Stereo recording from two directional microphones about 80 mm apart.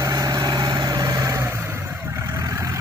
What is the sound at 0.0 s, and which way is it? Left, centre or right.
Vehicle, right.